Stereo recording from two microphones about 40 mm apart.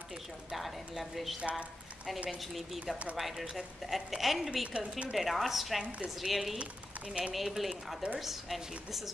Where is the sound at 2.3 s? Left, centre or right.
Centre.